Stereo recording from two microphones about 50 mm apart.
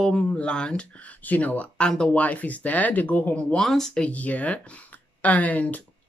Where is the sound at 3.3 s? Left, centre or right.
Left.